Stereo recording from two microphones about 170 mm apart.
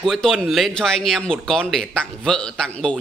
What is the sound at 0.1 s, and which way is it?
A man's voice, 5° left (ahead or behind).